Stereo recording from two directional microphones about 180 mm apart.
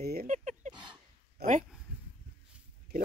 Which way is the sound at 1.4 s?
60° right (ahead or behind).